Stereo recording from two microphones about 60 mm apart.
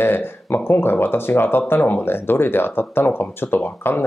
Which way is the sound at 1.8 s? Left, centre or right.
Left.